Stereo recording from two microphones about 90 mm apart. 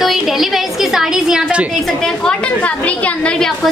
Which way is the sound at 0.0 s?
5° right (ahead or behind).